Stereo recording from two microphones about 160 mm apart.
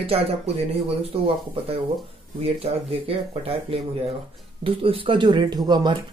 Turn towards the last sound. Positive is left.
turn(degrees=-25)  # may be behind; listen again after turning